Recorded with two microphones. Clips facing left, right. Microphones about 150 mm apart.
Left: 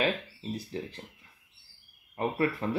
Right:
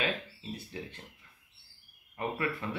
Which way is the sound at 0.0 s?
35° left (ahead or behind).